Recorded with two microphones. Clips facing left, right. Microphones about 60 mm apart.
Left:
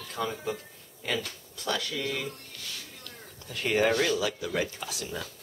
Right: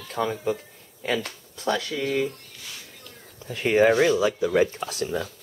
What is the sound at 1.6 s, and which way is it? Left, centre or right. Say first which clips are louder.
Speech: right 6 dB; right.